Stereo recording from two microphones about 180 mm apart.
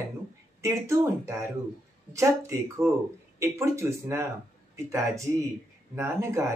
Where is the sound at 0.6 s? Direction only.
15° right (ahead or behind).